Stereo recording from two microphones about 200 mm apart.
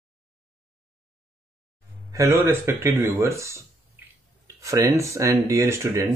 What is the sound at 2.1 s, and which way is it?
Speech, 15° right (ahead or behind).